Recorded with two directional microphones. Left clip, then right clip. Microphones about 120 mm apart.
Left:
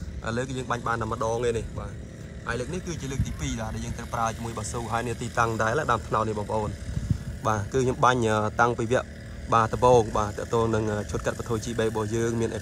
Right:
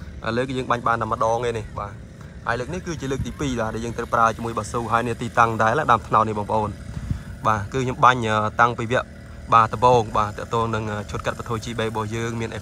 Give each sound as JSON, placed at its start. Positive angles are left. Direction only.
{"t": 0.2, "sound": "speech", "side_deg": 20}
{"t": 7.4, "sound": "speech", "side_deg": 25}